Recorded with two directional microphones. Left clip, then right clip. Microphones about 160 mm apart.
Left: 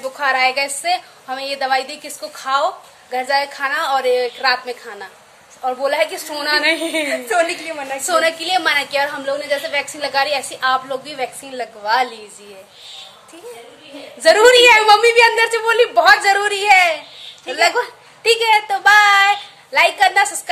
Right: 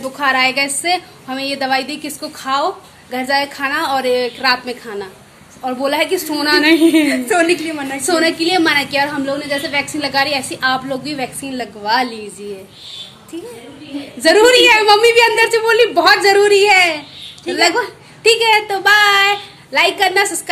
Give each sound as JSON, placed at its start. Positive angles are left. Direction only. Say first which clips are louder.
{"t": 0.0, "sound": "a woman's voice", "louder": "right 2 dB", "side_deg": 0}
{"t": 7.1, "sound": "a woman's voice", "louder": "right 3 dB", "side_deg": 25}
{"t": 8.0, "sound": "a woman's voice", "louder": "right 2 dB", "side_deg": 0}
{"t": 14.2, "sound": "a woman's voice", "louder": "even", "side_deg": -5}